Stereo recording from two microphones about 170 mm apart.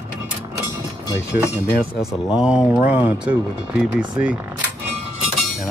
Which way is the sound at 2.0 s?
Centre (ahead or behind).